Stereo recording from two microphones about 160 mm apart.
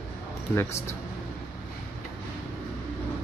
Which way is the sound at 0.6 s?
15° left (ahead or behind).